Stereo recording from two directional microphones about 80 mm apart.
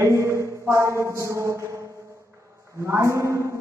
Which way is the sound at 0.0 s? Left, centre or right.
Right.